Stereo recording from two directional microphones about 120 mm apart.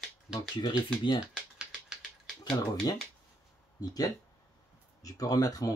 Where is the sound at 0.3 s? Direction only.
40° left (ahead or behind).